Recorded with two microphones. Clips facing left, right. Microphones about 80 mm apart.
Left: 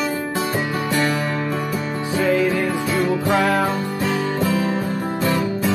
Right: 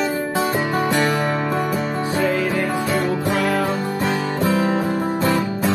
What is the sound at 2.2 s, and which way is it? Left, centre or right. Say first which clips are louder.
Music: left 4 dB; centre.